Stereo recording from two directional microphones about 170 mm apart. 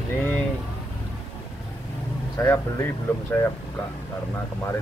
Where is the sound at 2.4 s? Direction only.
15° left (ahead or behind).